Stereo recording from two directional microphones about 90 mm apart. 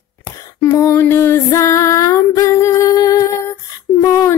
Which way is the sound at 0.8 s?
30° left (ahead or behind).